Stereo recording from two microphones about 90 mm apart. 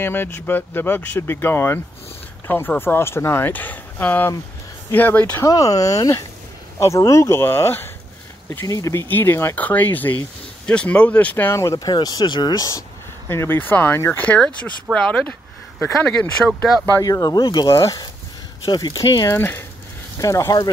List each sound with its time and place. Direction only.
0.0 s speech: 25° left (ahead or behind)
5.4 s speech: 40° left (ahead or behind)
9.0 s speech: 25° left (ahead or behind)
11.5 s speech: 35° left (ahead or behind); by 12.6 s 55° left (ahead or behind)
13.3 s speech: 25° left (ahead or behind)
14.2 s speech: 10° left (ahead or behind)
17.0 s speech: 45° left (ahead or behind)
18.7 s speech: 50° left (ahead or behind)
19.3 s speech: 25° left (ahead or behind)
20.2 s speech: 40° left (ahead or behind)